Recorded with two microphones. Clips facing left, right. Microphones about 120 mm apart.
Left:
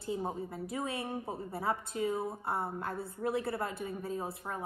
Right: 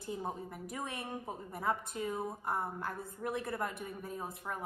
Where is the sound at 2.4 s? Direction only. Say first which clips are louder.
Left 1 dB; 30° left (ahead or behind).